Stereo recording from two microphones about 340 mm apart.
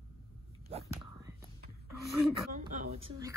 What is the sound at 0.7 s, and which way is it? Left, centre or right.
Whispering, centre.